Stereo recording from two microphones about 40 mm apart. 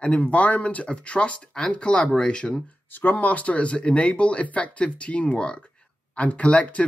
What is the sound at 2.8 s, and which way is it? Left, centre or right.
Speech, left.